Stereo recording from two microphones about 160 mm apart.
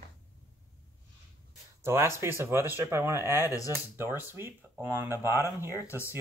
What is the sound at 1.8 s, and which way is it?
Speech, 15° right (ahead or behind).